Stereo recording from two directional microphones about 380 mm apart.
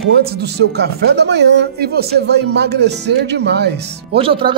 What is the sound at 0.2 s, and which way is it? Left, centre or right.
Speech, right.